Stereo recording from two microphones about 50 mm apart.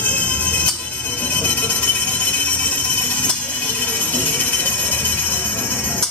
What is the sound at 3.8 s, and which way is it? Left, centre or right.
Music, left.